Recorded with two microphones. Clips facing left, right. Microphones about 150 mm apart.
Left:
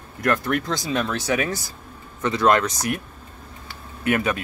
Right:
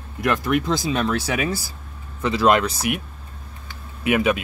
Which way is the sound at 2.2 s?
10° right (ahead or behind).